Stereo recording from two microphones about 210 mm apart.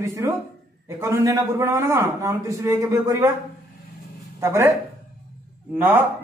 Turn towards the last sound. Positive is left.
turn(degrees=-10)  # may be behind; listen again after turning